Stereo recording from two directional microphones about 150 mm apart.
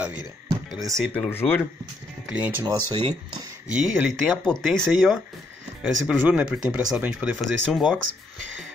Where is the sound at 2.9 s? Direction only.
30° right (ahead or behind).